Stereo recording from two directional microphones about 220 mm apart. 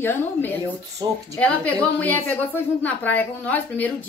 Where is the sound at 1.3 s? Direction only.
5° left (ahead or behind).